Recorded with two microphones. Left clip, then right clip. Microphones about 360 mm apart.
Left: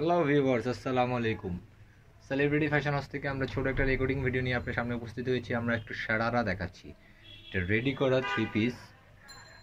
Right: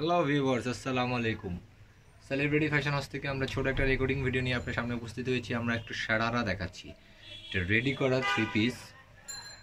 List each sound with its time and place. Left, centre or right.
0.0 s speech: centre